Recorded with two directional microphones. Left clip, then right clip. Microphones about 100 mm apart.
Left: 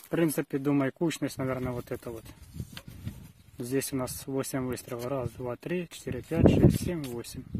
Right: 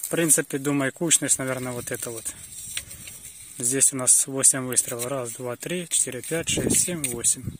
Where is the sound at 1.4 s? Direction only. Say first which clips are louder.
Right 4 dB; 15° right (ahead or behind).